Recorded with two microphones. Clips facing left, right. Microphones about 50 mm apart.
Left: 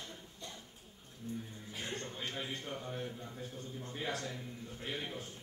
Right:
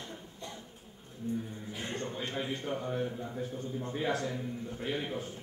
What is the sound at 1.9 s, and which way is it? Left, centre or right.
A man's voice, centre.